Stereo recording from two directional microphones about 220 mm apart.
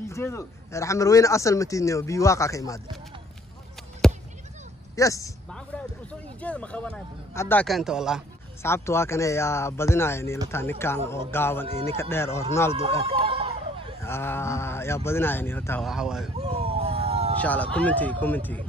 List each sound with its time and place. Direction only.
0.0 s speech: 10° left (ahead or behind)
4.9 s speech: 15° left (ahead or behind)
6.4 s speech: 5° left (ahead or behind)
8.6 s speech: 10° left (ahead or behind)
12.8 s a sound: 25° right (ahead or behind)
14.0 s speech: 10° left (ahead or behind)
15.9 s speech: 5° right (ahead or behind)
16.3 s dog: 25° right (ahead or behind)
17.4 s speech: 5° left (ahead or behind)